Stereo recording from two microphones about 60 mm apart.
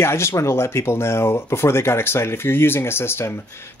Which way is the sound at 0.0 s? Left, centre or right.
Left.